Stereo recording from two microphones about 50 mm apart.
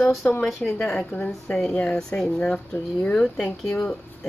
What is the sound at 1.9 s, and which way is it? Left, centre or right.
Speech, centre.